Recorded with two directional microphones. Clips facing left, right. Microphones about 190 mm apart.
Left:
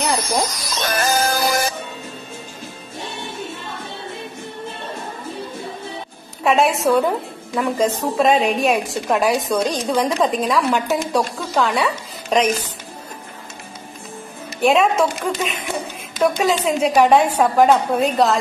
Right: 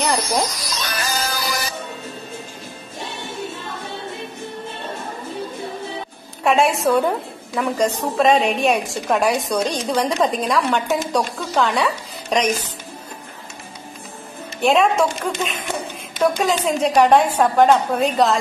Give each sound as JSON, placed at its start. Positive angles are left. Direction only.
{"t": 0.6, "sound": "music", "side_deg": 50}
{"t": 6.4, "sound": "a woman's voice", "side_deg": 0}
{"t": 14.6, "sound": "a woman's voice", "side_deg": 0}